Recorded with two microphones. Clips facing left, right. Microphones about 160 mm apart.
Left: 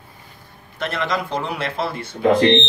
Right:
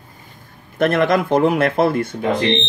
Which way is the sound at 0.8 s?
50° right (ahead or behind).